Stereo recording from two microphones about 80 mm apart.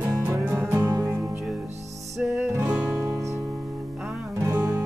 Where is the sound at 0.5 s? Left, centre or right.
Right.